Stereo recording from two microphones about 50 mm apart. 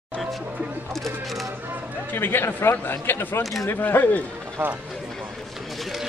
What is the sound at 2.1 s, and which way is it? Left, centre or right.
Speech, left.